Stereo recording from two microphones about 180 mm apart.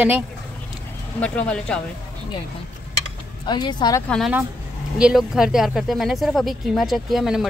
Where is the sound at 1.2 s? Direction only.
5° left (ahead or behind).